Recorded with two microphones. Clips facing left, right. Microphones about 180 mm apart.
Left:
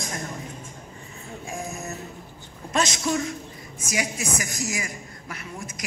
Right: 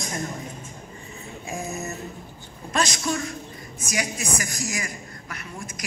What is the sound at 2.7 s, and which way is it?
A woman's voice, 20° left (ahead or behind).